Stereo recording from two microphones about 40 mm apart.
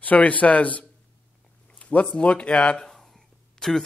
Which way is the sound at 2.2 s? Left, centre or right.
Left.